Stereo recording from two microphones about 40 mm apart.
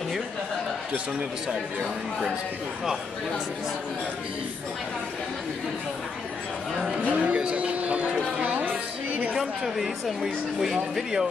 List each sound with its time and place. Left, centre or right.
7.0 s speech: right
7.3 s a sound: right
8.4 s music: right
9.4 s speech: centre